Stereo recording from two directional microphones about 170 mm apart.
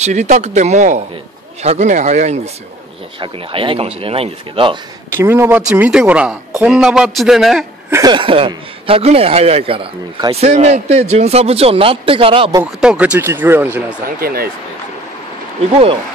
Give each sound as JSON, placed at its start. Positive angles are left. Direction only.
{"t": 0.0, "sound": "speech", "side_deg": -40}
{"t": 5.1, "sound": "a man's voice", "side_deg": -15}
{"t": 7.9, "sound": "speech", "side_deg": -25}
{"t": 12.8, "sound": "speech", "side_deg": -5}
{"t": 14.0, "sound": "speech", "side_deg": -60}
{"t": 15.7, "sound": "speech", "side_deg": -35}